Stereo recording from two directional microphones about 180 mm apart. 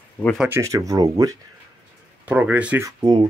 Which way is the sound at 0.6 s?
20° right (ahead or behind).